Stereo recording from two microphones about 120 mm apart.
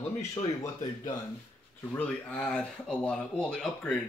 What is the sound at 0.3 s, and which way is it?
Speech, 30° left (ahead or behind).